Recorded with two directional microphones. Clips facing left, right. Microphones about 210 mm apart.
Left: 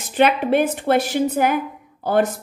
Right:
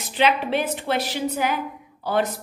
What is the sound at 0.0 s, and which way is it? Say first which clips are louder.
A woman's voice: left 4 dB; 50° left (ahead or behind).